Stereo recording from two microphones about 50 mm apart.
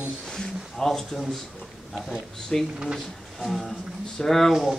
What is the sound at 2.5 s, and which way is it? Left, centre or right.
Speech, centre.